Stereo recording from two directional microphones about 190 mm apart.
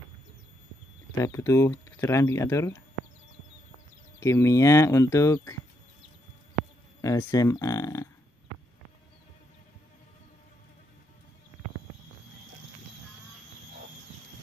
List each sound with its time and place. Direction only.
1.2 s speech: 15° left (ahead or behind)
4.2 s speech: 15° left (ahead or behind)
7.0 s speech: 15° left (ahead or behind)